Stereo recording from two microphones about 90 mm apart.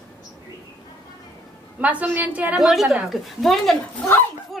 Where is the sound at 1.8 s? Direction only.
15° right (ahead or behind).